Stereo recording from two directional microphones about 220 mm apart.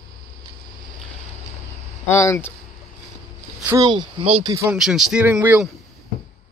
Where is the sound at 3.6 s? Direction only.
15° right (ahead or behind).